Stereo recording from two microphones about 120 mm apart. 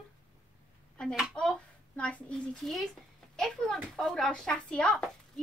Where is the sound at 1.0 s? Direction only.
5° left (ahead or behind).